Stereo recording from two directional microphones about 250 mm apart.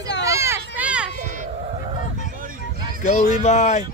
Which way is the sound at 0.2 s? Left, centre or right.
Centre.